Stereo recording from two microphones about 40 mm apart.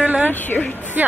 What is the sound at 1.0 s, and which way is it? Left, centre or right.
Speech, right.